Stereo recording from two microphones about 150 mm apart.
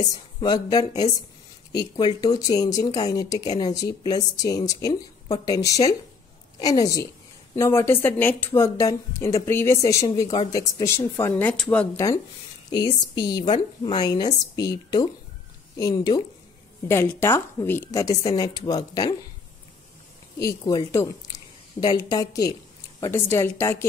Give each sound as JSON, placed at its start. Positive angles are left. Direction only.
{"t": 0.1, "sound": "speech", "side_deg": 25}
{"t": 12.7, "sound": "speech", "side_deg": 30}
{"t": 20.3, "sound": "a woman's voice", "side_deg": 25}